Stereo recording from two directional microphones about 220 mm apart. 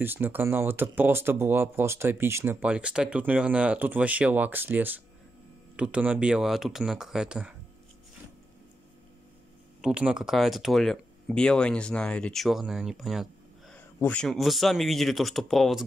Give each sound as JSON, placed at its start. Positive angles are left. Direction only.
{"t": 0.0, "sound": "speech", "side_deg": -10}
{"t": 9.8, "sound": "speech", "side_deg": -5}